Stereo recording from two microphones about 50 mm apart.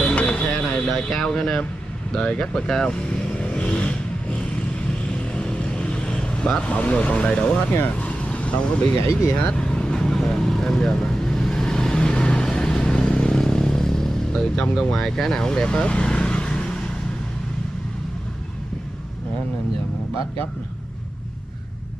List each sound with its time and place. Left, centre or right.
0.0 s a sound: left
0.8 s a sound: centre
1.2 s speech: centre
3.3 s vehicle: left
5.3 s vehicle: left
6.7 s speech: left
8.0 s vehicle: left
15.0 s speech: centre